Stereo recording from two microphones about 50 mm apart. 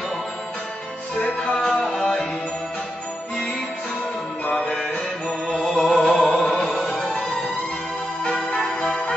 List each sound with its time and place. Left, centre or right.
1.2 s music: centre
5.5 s music: centre
8.8 s music: centre